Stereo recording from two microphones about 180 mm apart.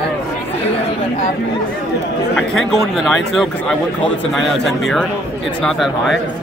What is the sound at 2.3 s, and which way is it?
Speech, centre (ahead or behind).